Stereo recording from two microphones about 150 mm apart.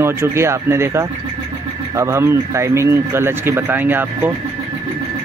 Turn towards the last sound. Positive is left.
turn(degrees=-15)  # may be behind; listen again after turning